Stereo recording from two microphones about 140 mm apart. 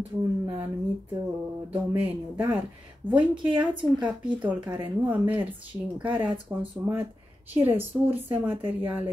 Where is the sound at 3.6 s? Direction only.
35° right (ahead or behind).